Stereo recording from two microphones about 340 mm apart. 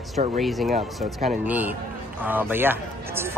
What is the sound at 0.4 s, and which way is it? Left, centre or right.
Speech, centre.